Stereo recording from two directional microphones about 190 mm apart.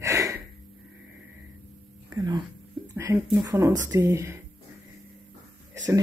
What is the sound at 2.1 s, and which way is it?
Speech, 20° right (ahead or behind).